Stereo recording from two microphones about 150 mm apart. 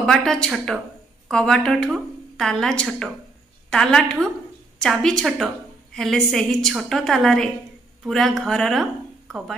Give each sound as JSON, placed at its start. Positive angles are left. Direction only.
{"t": 0.0, "sound": "speech", "side_deg": 5}